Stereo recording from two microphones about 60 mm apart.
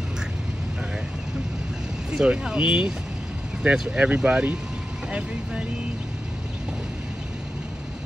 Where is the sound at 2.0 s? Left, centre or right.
Centre.